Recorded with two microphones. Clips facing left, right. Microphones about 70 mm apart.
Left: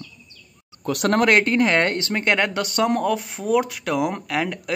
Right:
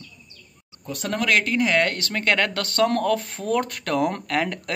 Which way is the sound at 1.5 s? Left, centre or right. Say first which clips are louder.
Left 2 dB; left.